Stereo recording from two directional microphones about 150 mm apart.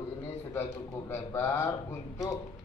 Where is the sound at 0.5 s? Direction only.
15° left (ahead or behind).